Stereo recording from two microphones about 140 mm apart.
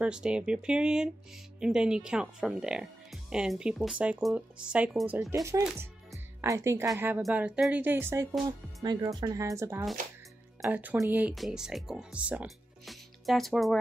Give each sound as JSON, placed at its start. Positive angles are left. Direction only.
{"t": 0.0, "sound": "speech", "side_deg": -5}
{"t": 5.3, "sound": "speech", "side_deg": -20}
{"t": 8.5, "sound": "speech", "side_deg": -30}
{"t": 11.3, "sound": "speech", "side_deg": 0}